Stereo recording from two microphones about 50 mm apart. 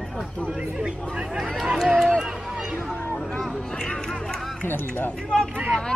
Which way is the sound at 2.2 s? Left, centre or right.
Centre.